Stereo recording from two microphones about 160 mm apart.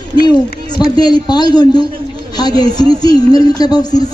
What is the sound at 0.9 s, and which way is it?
A woman's voice, 25° left (ahead or behind).